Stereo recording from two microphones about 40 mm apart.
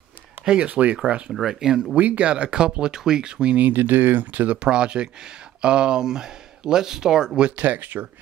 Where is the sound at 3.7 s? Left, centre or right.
Right.